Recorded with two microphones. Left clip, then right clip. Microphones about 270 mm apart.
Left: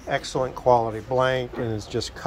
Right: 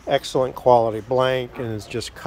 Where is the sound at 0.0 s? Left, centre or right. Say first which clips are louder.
Right 5 dB; right.